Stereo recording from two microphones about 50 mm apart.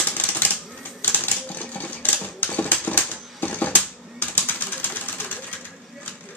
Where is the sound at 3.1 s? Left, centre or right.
Left.